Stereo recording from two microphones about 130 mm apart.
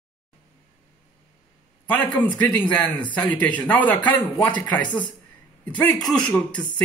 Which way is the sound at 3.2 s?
10° left (ahead or behind).